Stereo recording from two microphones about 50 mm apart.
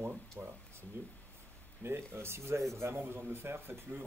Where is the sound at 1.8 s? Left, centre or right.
Right.